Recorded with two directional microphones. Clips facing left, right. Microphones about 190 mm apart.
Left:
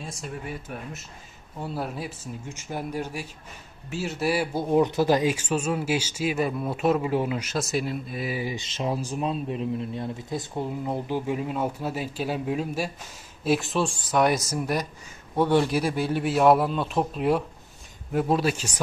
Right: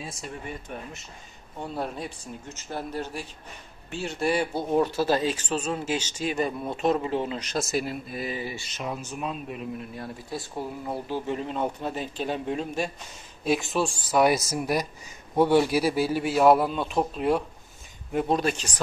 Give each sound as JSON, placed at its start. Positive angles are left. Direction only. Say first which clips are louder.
{"t": 0.0, "sound": "a man's voice", "louder": "left 1 dB", "side_deg": 0}
{"t": 8.4, "sound": "speech", "louder": "left 3 dB", "side_deg": 15}
{"t": 8.6, "sound": "a man's voice", "louder": "left 5 dB", "side_deg": 30}